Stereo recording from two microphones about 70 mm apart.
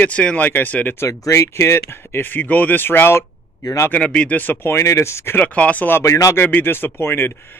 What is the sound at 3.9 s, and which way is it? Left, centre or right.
Speech, centre.